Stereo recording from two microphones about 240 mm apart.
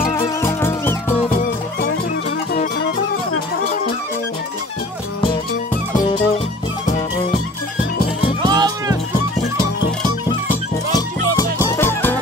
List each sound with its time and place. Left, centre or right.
0.4 s music: centre
1.1 s music: left
5.9 s music: left
8.5 s music: centre
11.7 s music: centre